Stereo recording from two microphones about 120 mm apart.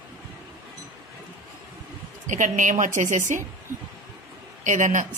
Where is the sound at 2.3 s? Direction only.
90° right.